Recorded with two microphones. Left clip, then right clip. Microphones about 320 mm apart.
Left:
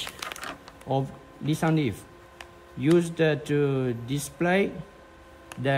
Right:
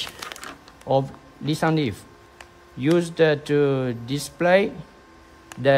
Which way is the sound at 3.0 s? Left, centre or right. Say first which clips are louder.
Right 5 dB; right.